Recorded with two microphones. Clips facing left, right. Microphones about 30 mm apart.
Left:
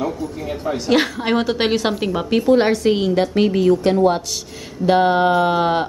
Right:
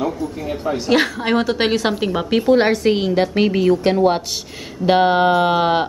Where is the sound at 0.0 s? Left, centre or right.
Centre.